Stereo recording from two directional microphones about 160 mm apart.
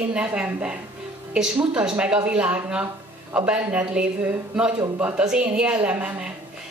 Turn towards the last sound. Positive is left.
turn(degrees=-10)  # may be behind; listen again after turning